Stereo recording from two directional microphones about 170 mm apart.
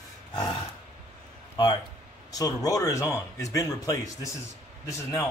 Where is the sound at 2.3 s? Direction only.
20° left (ahead or behind).